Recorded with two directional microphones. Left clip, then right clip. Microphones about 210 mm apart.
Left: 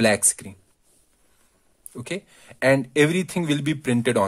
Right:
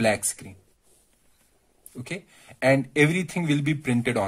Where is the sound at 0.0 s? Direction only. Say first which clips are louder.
Left 3 dB; 40° left (ahead or behind).